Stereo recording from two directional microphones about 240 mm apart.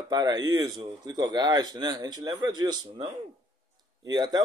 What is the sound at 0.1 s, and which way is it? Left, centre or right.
Speech, centre.